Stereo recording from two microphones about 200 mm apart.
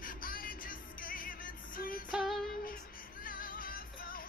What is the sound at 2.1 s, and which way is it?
Music, centre (ahead or behind).